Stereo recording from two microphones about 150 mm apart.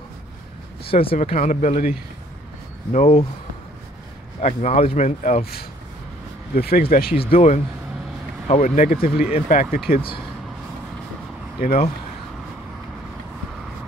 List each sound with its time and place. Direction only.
0.8 s speech: 40° left (ahead or behind)
1.2 s speech: 50° left (ahead or behind)
2.9 s speech: 45° left (ahead or behind)
4.4 s speech: 50° left (ahead or behind)
5.4 s speech: 90° left
7.2 s speech: 40° left (ahead or behind)
8.5 s speech: 55° left (ahead or behind)
9.8 s speech: 35° left (ahead or behind)